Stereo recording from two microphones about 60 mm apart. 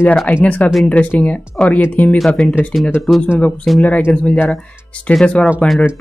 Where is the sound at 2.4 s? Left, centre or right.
Centre.